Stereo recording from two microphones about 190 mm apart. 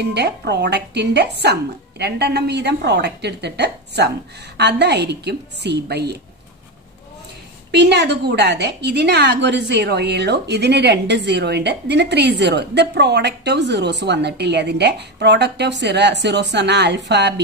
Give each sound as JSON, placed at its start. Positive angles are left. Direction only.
{"t": 0.0, "sound": "a woman's voice", "side_deg": -60}
{"t": 7.7, "sound": "a woman's voice", "side_deg": -60}